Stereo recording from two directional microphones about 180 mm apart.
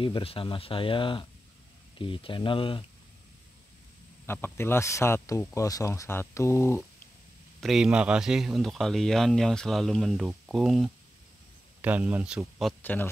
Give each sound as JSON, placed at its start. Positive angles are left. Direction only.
{"t": 0.0, "sound": "speech", "side_deg": 30}
{"t": 4.3, "sound": "speech", "side_deg": 15}
{"t": 7.6, "sound": "speech", "side_deg": -5}
{"t": 12.8, "sound": "speech", "side_deg": 10}